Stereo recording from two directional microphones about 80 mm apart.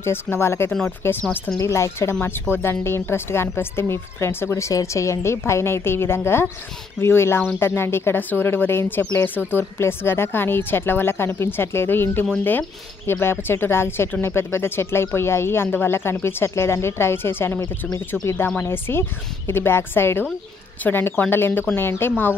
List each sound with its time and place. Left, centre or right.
0.0 s speech: left
2.2 s speech: left
18.6 s speech: left